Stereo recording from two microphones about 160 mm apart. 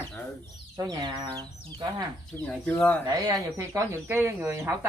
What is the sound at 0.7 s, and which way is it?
Speech, 25° right (ahead or behind).